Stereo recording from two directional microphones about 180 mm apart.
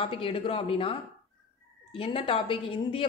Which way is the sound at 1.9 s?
30° left (ahead or behind).